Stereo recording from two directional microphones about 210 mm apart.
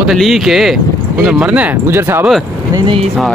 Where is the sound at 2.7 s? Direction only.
25° right (ahead or behind).